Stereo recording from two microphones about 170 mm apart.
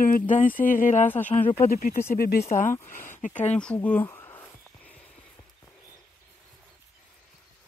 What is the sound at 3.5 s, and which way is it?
Speech, 5° left (ahead or behind).